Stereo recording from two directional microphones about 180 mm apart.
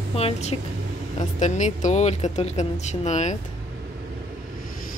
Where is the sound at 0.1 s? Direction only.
35° left (ahead or behind).